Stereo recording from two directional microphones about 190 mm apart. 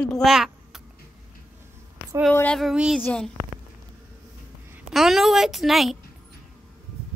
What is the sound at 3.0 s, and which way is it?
Speech, 5° left (ahead or behind).